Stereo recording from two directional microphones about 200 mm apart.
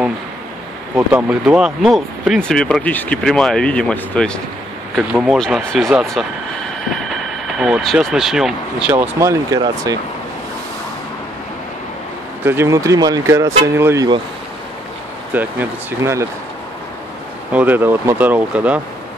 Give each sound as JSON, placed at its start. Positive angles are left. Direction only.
{"t": 0.9, "sound": "speech", "side_deg": -5}
{"t": 9.2, "sound": "speech", "side_deg": -15}
{"t": 12.4, "sound": "speech", "side_deg": -15}
{"t": 15.3, "sound": "speech", "side_deg": -10}
{"t": 17.5, "sound": "speech", "side_deg": -10}